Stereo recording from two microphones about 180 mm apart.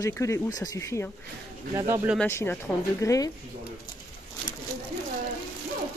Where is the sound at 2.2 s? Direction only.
10° left (ahead or behind).